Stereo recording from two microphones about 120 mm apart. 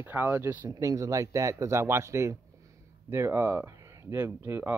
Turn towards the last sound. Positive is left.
turn(degrees=-15)  # may be behind; listen again after turning